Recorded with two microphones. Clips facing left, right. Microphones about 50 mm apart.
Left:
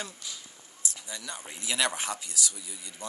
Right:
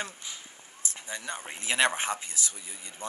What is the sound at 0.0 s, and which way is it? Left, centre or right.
Speech, right.